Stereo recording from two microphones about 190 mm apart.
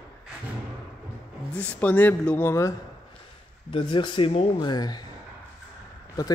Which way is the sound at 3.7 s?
25° left (ahead or behind).